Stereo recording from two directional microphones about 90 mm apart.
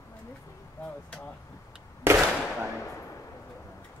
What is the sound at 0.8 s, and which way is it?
Speech, 20° left (ahead or behind).